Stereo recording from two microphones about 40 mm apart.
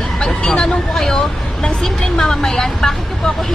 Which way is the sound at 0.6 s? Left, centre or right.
Centre.